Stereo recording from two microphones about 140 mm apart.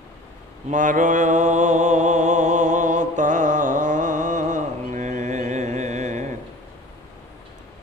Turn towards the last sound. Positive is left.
turn(degrees=-55)  # may be behind; listen again after turning